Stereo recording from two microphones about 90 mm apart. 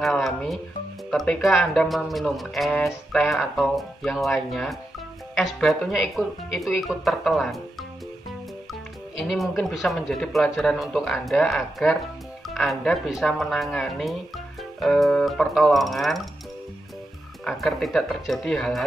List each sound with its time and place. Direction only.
0.0 s speech: centre (ahead or behind)
9.2 s speech: centre (ahead or behind)
17.5 s speech: 5° left (ahead or behind)